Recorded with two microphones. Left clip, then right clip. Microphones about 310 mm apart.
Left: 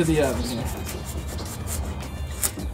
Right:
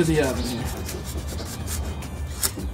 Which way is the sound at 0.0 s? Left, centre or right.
Centre.